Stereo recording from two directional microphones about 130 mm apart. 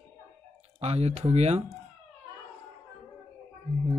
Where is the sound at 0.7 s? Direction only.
55° right (ahead or behind).